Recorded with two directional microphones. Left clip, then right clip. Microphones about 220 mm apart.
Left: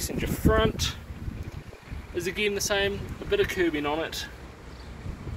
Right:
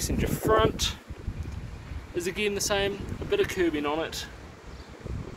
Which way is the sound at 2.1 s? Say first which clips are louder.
Left 1 dB; 5° right (ahead or behind).